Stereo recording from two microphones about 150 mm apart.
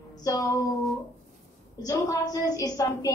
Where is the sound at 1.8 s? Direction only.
20° left (ahead or behind).